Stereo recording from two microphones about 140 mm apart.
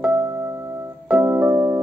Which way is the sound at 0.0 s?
15° right (ahead or behind).